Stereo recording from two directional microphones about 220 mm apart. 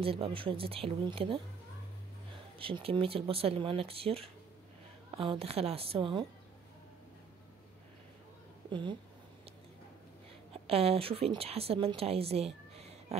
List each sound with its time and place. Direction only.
0.0 s speech: 25° right (ahead or behind)
2.6 s speech: 25° right (ahead or behind)
8.6 s speech: 20° right (ahead or behind)
10.5 s a woman's voice: 25° right (ahead or behind)